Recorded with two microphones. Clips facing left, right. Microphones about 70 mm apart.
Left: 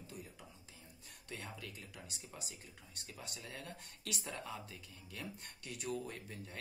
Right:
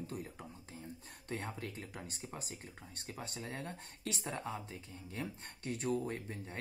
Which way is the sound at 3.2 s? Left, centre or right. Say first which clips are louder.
Right 6 dB; right.